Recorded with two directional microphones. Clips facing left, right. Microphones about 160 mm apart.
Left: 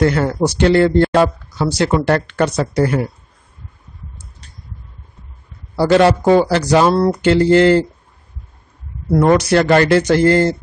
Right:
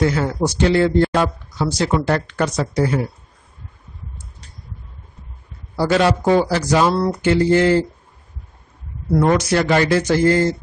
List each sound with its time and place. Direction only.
0.0 s speech: 60° left (ahead or behind)
5.8 s speech: 65° left (ahead or behind)
7.1 s a sound: 65° left (ahead or behind)
9.1 s speech: 45° left (ahead or behind)
9.4 s speech: 65° left (ahead or behind)